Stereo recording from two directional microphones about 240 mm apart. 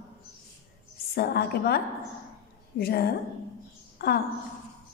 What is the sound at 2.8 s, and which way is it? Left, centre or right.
A woman's voice, left.